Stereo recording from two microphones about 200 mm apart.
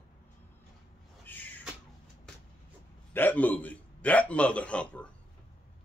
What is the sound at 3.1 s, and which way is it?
Speech, 10° left (ahead or behind).